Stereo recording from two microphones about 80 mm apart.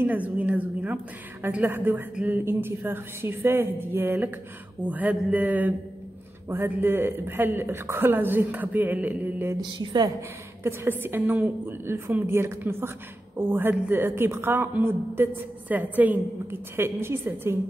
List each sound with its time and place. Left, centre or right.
0.0 s a woman's voice: right
9.6 s a woman's voice: right
10.6 s a woman's voice: right